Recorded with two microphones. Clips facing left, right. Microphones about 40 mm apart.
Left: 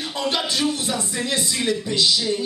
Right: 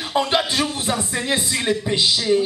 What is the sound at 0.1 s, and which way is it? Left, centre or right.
Speech, right.